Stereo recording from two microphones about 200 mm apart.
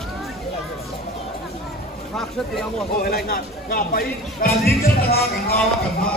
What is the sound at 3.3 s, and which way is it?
Speech, 45° left (ahead or behind).